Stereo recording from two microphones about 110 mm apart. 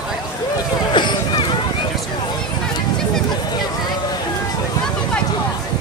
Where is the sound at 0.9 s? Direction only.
45° left (ahead or behind).